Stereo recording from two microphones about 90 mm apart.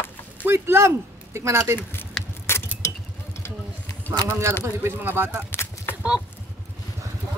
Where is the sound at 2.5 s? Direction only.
25° left (ahead or behind).